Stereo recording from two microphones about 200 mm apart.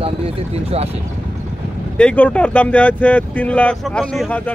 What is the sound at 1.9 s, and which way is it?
Speech, 5° left (ahead or behind).